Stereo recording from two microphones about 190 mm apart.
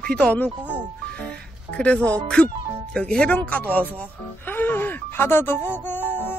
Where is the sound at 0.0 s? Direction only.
5° left (ahead or behind).